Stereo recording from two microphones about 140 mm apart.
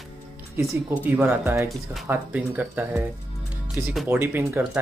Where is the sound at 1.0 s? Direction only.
15° right (ahead or behind).